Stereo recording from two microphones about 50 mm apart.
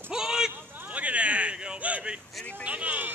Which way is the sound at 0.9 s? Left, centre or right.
Right.